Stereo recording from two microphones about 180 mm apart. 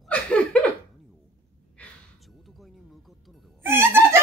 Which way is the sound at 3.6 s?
15° right (ahead or behind).